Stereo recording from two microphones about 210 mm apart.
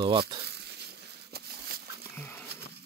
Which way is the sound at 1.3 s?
50° right (ahead or behind).